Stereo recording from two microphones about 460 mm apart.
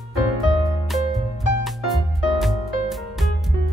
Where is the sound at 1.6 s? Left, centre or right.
Centre.